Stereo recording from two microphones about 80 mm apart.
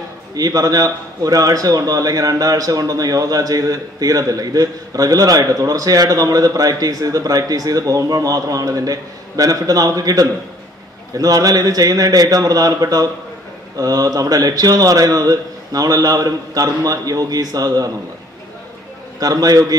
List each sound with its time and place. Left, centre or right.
0.4 s a man's voice: right
19.1 s a man's voice: right